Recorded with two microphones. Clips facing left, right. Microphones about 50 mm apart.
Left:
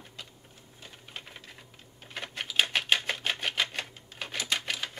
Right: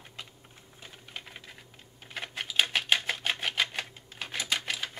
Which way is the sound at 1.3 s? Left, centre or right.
Centre.